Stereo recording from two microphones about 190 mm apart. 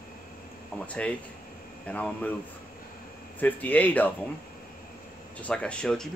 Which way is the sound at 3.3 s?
10° left (ahead or behind).